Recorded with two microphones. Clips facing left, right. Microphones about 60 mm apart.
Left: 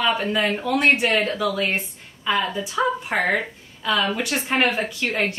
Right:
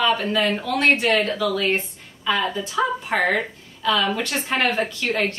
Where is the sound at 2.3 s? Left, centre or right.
Centre.